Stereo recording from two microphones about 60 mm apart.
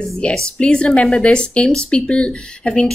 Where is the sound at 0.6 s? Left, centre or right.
Centre.